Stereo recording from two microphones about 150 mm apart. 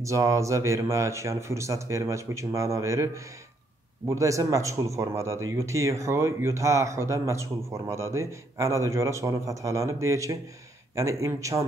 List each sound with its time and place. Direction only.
0.0 s speech: 20° right (ahead or behind)